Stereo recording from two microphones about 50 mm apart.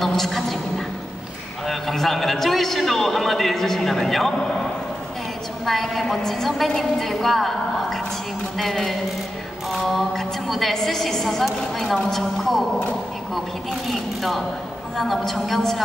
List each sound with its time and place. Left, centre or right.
0.0 s a sound: centre
1.7 s a man's voice: centre
5.7 s a man's voice: centre
13.8 s a man's voice: centre